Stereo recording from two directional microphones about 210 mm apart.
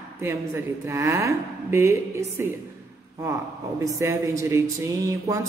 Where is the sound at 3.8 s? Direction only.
15° right (ahead or behind).